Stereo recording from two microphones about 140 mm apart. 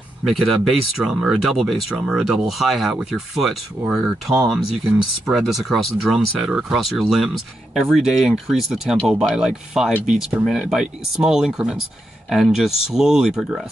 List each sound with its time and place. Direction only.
0.2 s speech: centre (ahead or behind)